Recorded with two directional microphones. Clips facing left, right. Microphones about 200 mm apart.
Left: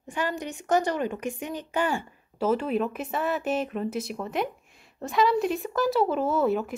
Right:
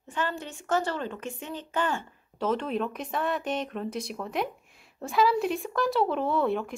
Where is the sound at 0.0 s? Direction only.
15° left (ahead or behind).